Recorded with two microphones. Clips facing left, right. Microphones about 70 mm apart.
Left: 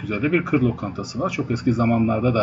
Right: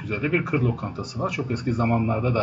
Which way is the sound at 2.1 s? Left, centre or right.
Centre.